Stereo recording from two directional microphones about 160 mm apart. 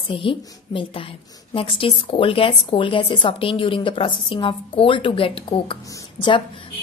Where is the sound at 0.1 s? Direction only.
35° left (ahead or behind).